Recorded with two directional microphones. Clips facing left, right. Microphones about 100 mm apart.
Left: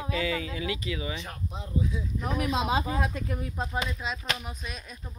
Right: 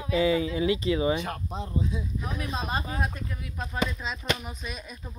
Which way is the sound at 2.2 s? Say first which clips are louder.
Left 8 dB; 90° left.